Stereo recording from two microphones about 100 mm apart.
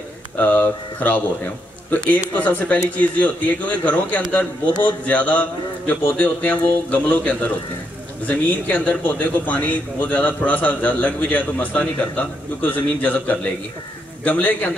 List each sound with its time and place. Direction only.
0.4 s a man's voice: 15° left (ahead or behind)